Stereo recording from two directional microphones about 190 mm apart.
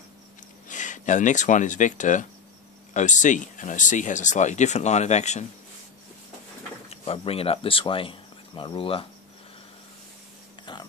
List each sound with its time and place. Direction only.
0.7 s speech: 40° left (ahead or behind)
6.9 s speech: 30° left (ahead or behind)
10.6 s a sound: 25° left (ahead or behind)